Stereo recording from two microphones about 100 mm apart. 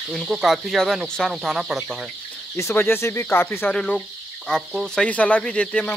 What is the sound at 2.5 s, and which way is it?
Speech, 25° left (ahead or behind).